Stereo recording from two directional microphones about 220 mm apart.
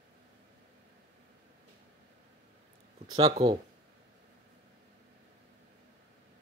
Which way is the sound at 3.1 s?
15° right (ahead or behind).